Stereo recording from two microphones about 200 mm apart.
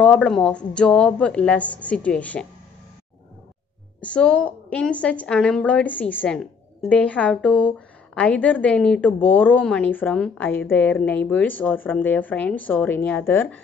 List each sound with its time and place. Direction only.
0.0 s a woman's voice: 5° left (ahead or behind)
4.0 s a woman's voice: 5° left (ahead or behind)